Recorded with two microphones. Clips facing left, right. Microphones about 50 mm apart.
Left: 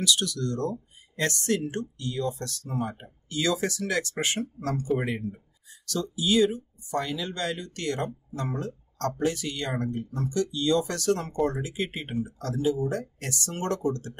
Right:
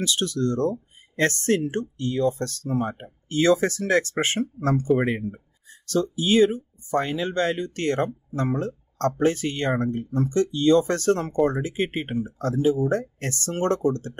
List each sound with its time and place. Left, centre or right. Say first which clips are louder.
0.0 s speech: right 3 dB; right